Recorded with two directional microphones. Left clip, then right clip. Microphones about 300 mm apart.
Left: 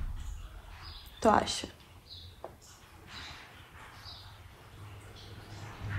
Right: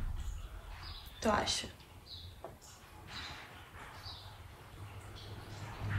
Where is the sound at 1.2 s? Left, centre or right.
Centre.